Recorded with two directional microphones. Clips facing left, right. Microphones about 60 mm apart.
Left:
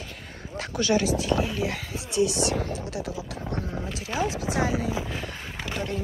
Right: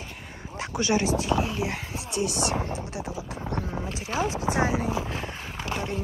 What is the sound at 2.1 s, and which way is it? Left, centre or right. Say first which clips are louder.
Speech: left 4 dB; right.